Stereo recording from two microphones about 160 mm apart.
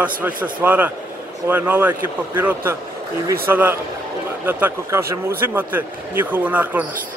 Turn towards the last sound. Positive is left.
turn(degrees=-10)  # may be behind; listen again after turning